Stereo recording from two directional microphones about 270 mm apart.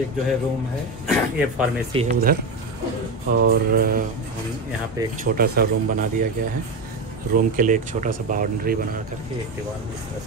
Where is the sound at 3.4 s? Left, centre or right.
Right.